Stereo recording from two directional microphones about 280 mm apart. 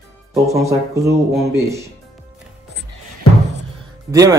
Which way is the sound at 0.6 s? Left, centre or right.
Centre.